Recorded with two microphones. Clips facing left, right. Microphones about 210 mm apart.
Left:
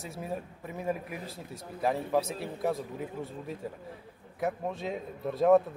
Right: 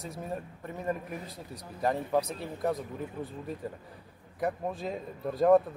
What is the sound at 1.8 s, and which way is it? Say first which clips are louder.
A man's voice: even; centre (ahead or behind).